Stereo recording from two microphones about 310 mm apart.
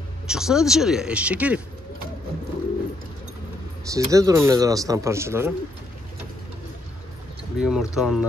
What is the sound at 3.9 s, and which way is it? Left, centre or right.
Speech, centre.